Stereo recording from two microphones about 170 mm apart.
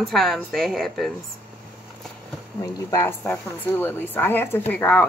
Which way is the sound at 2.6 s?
20° left (ahead or behind).